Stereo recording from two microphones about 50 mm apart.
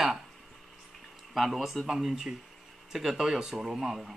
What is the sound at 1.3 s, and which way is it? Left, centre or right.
Speech, centre.